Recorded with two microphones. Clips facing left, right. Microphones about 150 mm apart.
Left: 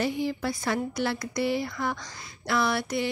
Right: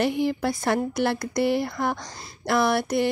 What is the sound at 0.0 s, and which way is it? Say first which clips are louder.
Speech: right 5 dB; 65° right (ahead or behind).